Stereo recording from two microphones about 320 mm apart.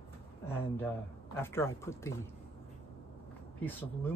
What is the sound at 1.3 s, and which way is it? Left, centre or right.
Speech, centre.